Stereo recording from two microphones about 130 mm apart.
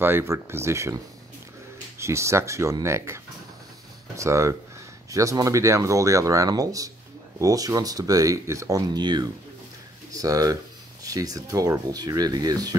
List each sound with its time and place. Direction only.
0.0 s speech: 20° right (ahead or behind)
2.0 s speech: 20° right (ahead or behind)
4.2 s speech: 25° right (ahead or behind)